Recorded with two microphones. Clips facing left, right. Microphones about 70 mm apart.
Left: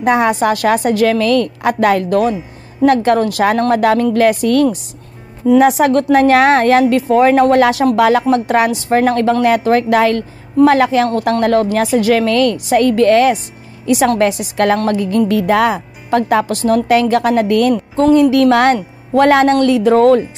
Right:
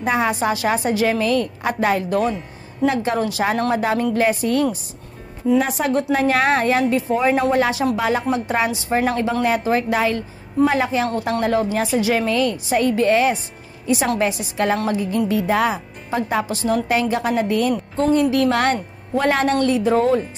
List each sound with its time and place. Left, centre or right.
0.0 s a woman's voice: left
5.5 s a woman's voice: left
11.1 s a woman's voice: left
13.8 s a woman's voice: left